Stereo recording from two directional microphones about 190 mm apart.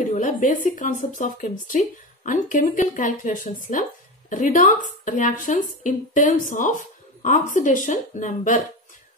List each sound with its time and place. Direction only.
0.1 s a woman's voice: 45° left (ahead or behind)